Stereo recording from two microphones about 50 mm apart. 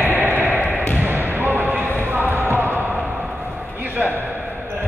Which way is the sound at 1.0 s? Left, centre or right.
Right.